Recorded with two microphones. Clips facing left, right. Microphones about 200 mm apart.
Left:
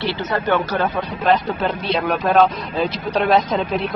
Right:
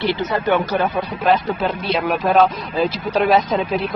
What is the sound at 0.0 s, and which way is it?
Speech, 15° right (ahead or behind).